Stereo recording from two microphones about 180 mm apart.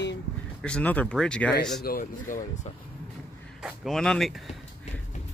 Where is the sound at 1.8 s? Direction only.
55° left (ahead or behind).